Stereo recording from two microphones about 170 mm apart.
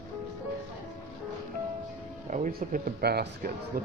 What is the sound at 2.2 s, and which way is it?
Speech, 50° right (ahead or behind).